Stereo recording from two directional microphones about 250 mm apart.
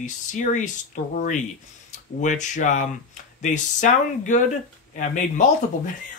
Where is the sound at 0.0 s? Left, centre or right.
Left.